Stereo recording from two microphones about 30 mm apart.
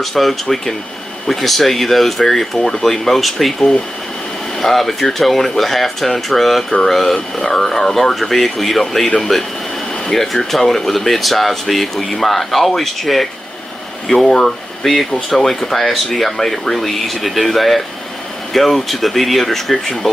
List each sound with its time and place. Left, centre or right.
0.0 s speech: centre
4.6 s speech: centre
10.1 s speech: centre
14.2 s speech: left; by 19.6 s centre
19.7 s speech: centre